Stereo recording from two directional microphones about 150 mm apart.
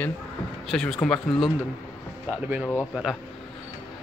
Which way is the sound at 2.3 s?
15° right (ahead or behind).